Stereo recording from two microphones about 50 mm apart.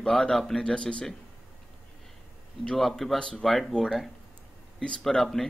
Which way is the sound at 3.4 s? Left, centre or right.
Centre.